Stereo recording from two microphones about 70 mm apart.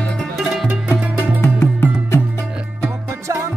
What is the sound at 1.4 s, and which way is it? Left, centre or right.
Music, left.